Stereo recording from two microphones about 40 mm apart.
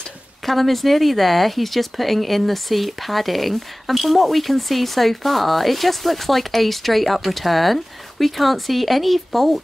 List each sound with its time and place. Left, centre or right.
0.5 s speech: centre